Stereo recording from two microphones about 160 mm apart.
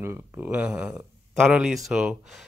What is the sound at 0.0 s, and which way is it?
Speech, 10° right (ahead or behind).